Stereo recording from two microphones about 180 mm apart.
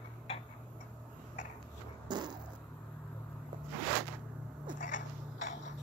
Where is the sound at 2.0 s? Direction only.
25° right (ahead or behind).